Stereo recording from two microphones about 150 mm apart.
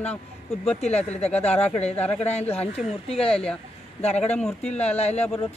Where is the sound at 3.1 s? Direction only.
5° left (ahead or behind).